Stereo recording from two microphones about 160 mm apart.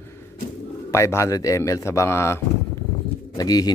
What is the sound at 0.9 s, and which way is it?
Speech, 15° left (ahead or behind).